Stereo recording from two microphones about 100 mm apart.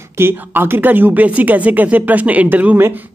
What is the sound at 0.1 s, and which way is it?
Speech, 25° right (ahead or behind).